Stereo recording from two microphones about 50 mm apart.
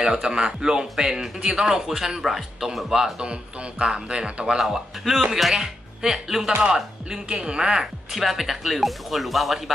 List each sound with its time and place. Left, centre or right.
0.0 s speech: centre
4.6 s speech: centre